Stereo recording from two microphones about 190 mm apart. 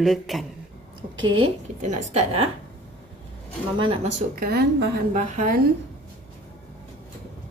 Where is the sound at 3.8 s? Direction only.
30° right (ahead or behind).